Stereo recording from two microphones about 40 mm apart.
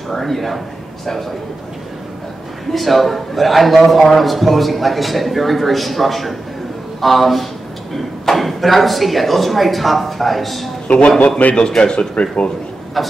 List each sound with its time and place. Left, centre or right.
0.1 s a man's voice: centre
2.7 s a man's voice: centre
11.1 s speech: left
13.0 s a man's voice: centre